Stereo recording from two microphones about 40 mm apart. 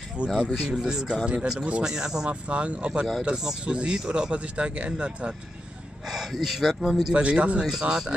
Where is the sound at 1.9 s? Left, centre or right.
Centre.